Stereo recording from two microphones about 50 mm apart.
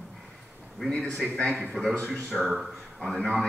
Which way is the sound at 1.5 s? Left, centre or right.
Centre.